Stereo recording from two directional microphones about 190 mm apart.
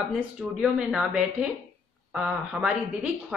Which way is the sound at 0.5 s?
5° right (ahead or behind).